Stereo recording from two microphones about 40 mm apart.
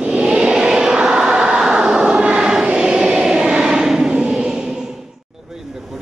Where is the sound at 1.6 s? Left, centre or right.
Centre.